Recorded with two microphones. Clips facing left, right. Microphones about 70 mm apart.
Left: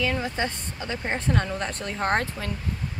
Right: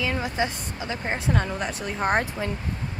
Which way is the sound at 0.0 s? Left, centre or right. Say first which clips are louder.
Even; centre.